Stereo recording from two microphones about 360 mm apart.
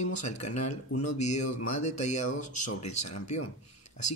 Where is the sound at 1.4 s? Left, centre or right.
Left.